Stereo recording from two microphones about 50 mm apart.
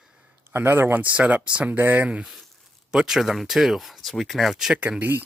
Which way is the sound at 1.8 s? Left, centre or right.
Right.